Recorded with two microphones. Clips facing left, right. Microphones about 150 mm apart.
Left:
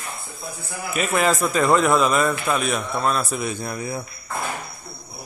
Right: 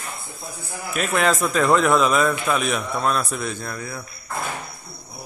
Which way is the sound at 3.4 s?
15° left (ahead or behind).